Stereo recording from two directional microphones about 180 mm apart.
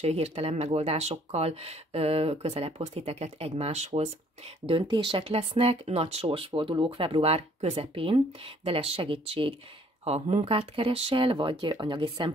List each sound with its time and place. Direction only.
0.0 s speech: 35° right (ahead or behind)